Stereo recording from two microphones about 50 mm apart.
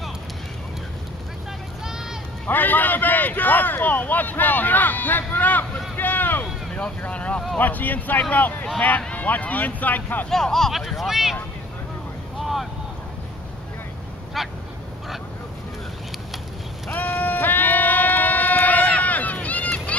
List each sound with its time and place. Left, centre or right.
2.4 s speech: left
5.9 s boat: left
7.0 s speech: left
10.3 s speech: centre
10.7 s speech: centre
12.4 s boat: centre
16.9 s sheep: left
18.9 s run: left